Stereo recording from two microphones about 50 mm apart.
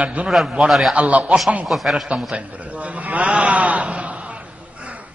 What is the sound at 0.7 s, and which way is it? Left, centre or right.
Speech, centre.